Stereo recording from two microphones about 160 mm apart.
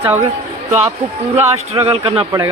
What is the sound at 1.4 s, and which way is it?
Speech, 40° right (ahead or behind).